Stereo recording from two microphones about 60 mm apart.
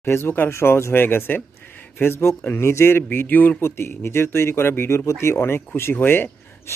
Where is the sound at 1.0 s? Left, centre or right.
Left.